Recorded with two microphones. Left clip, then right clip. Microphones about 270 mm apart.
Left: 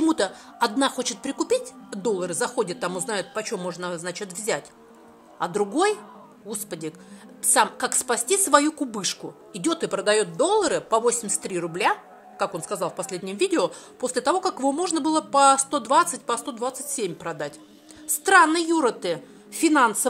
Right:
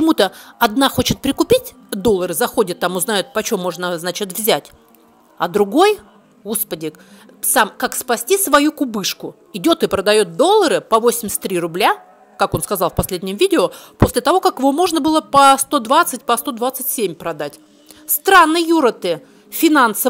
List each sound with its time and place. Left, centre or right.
0.0 s a woman's voice: right